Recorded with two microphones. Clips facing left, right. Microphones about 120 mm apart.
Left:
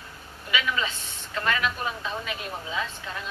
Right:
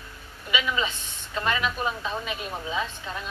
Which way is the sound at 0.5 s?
20° right (ahead or behind).